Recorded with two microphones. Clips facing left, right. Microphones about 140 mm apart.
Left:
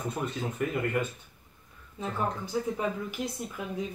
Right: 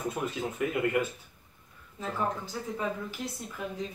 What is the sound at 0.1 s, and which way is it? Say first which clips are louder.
Speech: even; 5° right (ahead or behind).